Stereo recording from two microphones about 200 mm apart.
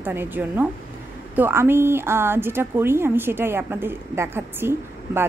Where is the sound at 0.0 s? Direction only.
10° right (ahead or behind).